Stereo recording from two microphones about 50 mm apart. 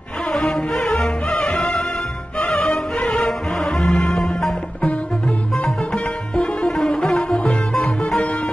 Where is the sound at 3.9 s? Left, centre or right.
Left.